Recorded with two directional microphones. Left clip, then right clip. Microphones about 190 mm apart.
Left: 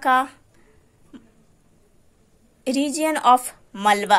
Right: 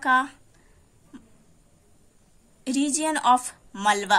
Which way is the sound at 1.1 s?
20° left (ahead or behind).